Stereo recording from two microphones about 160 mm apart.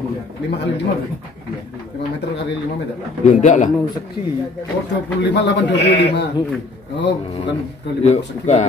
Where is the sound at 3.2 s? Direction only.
50° left (ahead or behind).